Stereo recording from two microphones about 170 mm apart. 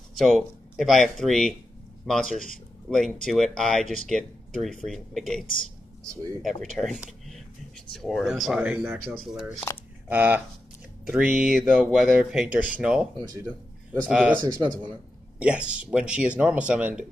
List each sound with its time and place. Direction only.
0.2 s speech: centre (ahead or behind)
6.4 s speech: centre (ahead or behind)
13.2 s speech: 25° right (ahead or behind)
14.0 s speech: 5° right (ahead or behind)
15.3 s speech: 5° right (ahead or behind)